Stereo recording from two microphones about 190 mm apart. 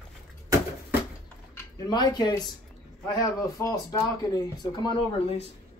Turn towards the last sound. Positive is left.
turn(degrees=25)  # may be behind; listen again after turning